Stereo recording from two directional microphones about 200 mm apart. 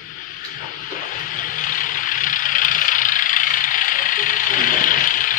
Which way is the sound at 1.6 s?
40° left (ahead or behind).